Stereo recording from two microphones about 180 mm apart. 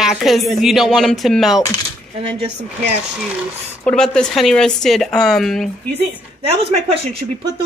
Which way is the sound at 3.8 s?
5° left (ahead or behind).